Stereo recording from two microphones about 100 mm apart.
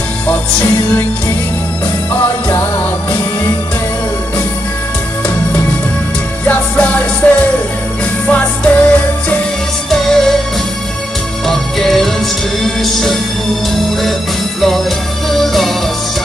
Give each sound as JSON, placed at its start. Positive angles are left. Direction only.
{"t": 0.3, "sound": "music", "side_deg": 15}
{"t": 6.4, "sound": "music", "side_deg": 15}
{"t": 9.8, "sound": "music", "side_deg": 5}
{"t": 11.4, "sound": "music", "side_deg": 5}
{"t": 15.2, "sound": "music", "side_deg": 0}